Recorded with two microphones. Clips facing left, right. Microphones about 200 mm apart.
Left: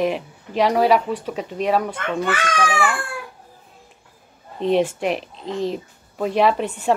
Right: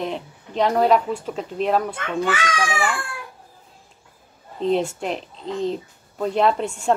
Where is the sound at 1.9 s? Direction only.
50° left (ahead or behind).